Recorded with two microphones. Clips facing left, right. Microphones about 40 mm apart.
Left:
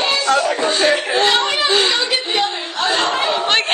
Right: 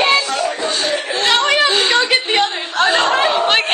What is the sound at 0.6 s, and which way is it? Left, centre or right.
Chuckle, centre.